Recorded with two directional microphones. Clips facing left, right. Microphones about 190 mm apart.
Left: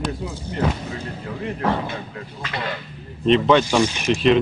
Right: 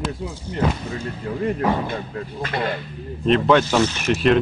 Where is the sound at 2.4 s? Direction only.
50° right (ahead or behind).